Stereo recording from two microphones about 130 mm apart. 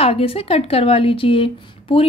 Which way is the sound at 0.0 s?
45° left (ahead or behind).